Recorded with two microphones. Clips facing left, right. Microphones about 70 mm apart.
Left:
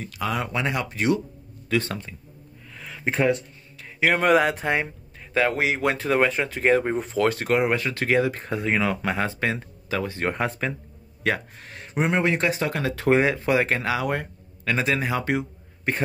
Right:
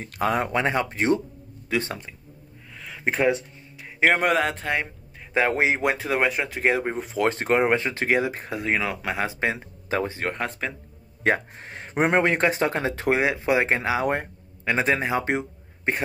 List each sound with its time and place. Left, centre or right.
0.0 s speech: right
1.7 s speech: centre
2.7 s a sound: centre
4.3 s speech: centre
5.5 s speech: right; by 7.2 s centre
7.2 s speech: right; by 9.3 s centre
9.3 s speech: centre
9.8 s speech: right
10.2 s speech: centre
11.2 s speech: right
12.0 s speech: right
13.1 s speech: centre
13.4 s speech: centre